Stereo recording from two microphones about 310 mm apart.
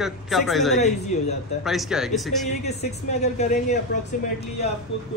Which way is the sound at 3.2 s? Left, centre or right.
Left.